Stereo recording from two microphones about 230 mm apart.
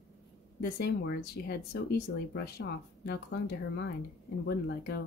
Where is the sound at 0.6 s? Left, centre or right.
Left.